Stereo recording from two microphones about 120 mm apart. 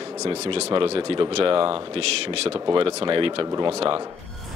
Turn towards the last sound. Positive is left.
turn(degrees=-50)  # may be behind; listen again after turning